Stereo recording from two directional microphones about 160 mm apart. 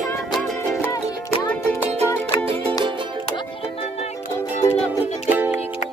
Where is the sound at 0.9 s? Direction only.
20° left (ahead or behind).